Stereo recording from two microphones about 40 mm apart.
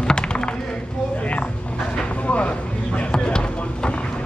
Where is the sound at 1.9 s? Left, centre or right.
Left.